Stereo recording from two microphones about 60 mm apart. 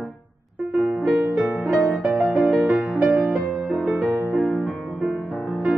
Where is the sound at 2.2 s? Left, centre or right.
Right.